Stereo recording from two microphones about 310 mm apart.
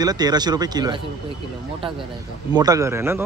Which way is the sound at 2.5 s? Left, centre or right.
Centre.